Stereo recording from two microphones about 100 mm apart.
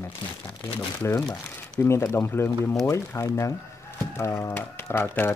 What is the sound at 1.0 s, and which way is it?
Speech, 25° left (ahead or behind).